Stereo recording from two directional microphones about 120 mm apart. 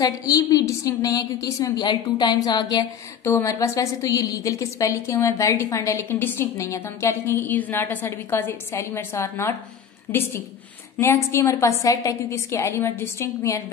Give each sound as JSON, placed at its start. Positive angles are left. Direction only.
{"t": 0.3, "sound": "a woman's voice", "side_deg": 30}